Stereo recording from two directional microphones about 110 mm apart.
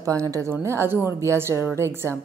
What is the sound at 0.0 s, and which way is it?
Speech, 30° right (ahead or behind).